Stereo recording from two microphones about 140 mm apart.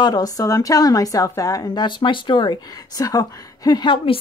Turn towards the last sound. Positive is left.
turn(degrees=35)  # may be behind; listen again after turning